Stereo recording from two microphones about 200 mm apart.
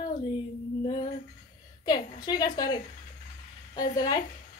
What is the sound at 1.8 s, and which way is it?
Speech, 20° left (ahead or behind).